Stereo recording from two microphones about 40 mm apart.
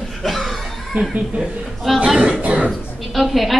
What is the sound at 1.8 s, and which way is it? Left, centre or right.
Speech, centre.